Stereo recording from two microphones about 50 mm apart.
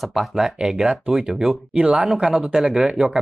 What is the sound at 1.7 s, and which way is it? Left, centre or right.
Speech, right.